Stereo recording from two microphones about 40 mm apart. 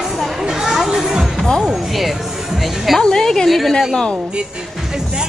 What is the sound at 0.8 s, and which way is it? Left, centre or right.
Music, centre.